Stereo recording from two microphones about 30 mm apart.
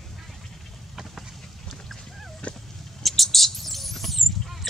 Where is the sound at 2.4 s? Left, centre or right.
Left.